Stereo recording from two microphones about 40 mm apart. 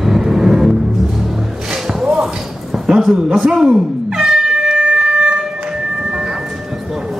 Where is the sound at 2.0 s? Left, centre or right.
Centre.